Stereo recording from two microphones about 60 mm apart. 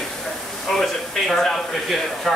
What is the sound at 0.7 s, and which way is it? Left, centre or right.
Speech, centre.